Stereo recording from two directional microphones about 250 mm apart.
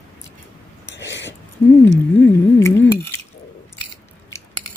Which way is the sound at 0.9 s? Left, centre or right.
Left.